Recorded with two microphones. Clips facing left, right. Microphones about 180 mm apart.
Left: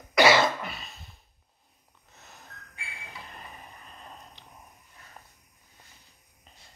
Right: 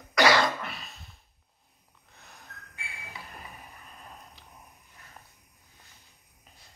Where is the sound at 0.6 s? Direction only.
Centre (ahead or behind).